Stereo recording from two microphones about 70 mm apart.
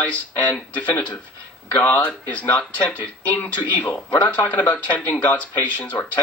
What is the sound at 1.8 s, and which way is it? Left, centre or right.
A man's voice, left.